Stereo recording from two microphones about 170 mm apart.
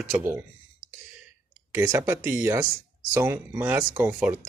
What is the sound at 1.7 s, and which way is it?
Speech, 15° right (ahead or behind).